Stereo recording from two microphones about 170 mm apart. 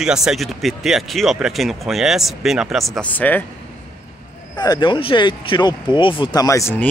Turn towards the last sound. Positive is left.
turn(degrees=15)  # may be behind; listen again after turning